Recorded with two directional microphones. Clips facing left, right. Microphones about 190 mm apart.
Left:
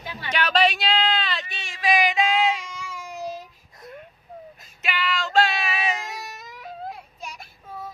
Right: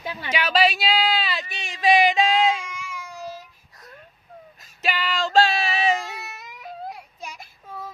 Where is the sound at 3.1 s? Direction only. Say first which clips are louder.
Left 5 dB; 20° left (ahead or behind).